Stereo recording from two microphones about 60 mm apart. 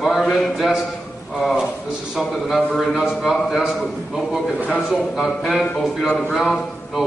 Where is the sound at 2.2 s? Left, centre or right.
Centre.